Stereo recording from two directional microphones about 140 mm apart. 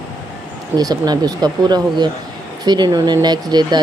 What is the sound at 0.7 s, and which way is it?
Speech, 30° right (ahead or behind).